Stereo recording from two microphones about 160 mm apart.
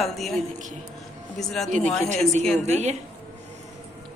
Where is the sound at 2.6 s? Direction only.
45° right (ahead or behind).